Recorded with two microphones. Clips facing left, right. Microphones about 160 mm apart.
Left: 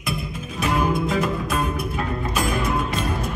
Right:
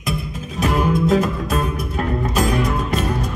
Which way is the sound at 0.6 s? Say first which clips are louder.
Right 3 dB; 40° right (ahead or behind).